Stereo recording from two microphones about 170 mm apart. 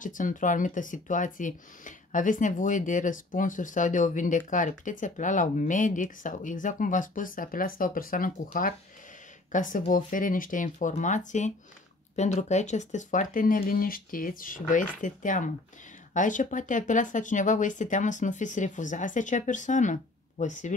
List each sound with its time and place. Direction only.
0.0 s speech: 50° left (ahead or behind)